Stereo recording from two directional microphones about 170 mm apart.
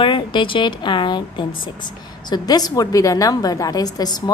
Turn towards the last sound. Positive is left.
turn(degrees=20)  # may be behind; listen again after turning